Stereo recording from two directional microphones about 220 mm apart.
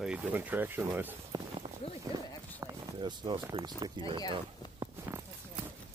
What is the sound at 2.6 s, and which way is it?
Speech, 20° right (ahead or behind).